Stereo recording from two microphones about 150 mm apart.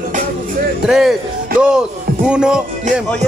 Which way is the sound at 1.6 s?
5° right (ahead or behind).